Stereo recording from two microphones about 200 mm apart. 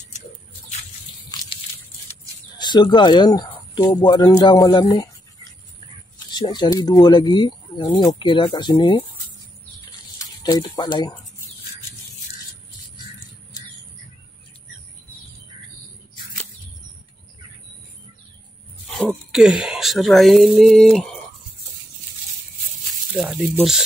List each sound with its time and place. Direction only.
1.3 s a sound: 20° left (ahead or behind)
2.0 s speech: 20° left (ahead or behind)
10.1 s speech: 20° left (ahead or behind)
18.9 s speech: centre (ahead or behind)
23.1 s speech: 10° right (ahead or behind)